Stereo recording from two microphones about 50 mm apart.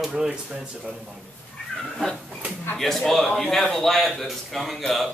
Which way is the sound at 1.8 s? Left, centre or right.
Centre.